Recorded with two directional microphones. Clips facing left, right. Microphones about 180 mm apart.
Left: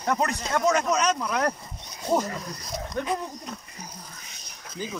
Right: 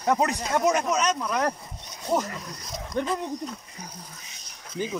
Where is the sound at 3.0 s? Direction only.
25° right (ahead or behind).